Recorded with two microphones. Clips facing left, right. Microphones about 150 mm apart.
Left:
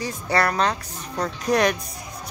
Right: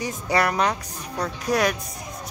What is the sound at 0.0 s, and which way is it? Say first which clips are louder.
Speech: even; 15° right (ahead or behind).